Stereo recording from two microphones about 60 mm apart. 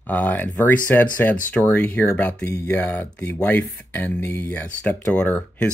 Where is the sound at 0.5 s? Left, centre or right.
Left.